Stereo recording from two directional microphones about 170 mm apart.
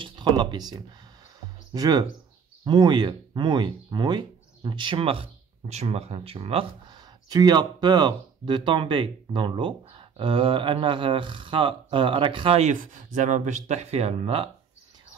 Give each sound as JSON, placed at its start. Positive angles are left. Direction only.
{"t": 0.0, "sound": "speech", "side_deg": -25}
{"t": 7.2, "sound": "speech", "side_deg": -25}
{"t": 12.7, "sound": "speech", "side_deg": -45}